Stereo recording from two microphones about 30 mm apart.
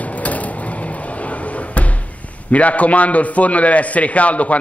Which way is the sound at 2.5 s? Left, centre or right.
Left.